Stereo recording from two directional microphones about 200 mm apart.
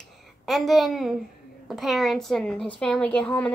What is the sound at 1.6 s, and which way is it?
A woman's voice, centre (ahead or behind).